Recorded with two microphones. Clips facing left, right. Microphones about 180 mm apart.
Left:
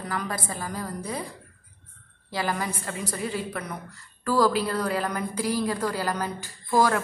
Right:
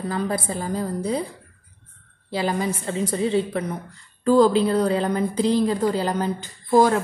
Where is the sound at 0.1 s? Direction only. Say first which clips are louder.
Right 5 dB; 30° right (ahead or behind).